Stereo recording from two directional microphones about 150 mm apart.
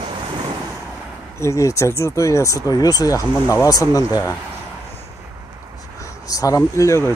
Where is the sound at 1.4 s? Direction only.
20° left (ahead or behind).